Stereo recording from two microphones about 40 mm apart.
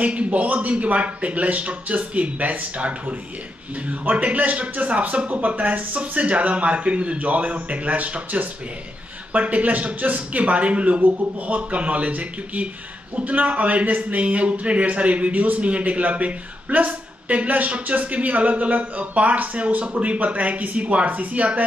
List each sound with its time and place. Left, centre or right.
0.0 s a man's voice: right